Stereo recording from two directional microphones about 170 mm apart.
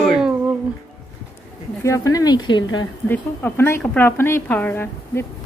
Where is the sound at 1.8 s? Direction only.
20° left (ahead or behind).